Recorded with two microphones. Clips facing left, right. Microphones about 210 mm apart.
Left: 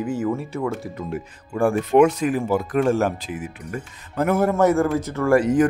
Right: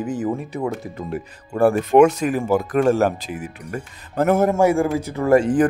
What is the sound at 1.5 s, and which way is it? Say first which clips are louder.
Speech: right 2 dB; 40° right (ahead or behind).